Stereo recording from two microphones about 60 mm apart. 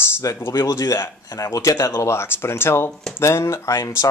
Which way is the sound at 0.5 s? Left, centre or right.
Left.